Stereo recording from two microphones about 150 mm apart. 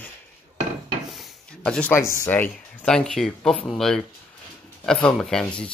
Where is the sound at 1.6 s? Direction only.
5° left (ahead or behind).